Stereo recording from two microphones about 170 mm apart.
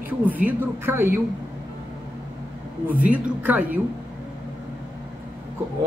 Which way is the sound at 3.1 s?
10° right (ahead or behind).